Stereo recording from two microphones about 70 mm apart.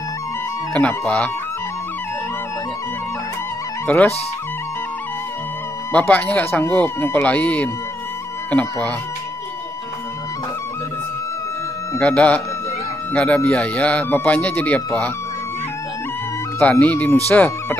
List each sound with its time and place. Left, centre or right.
0.7 s speech: centre
3.8 s speech: left
5.9 s speech: left
12.0 s speech: centre
16.8 s speech: left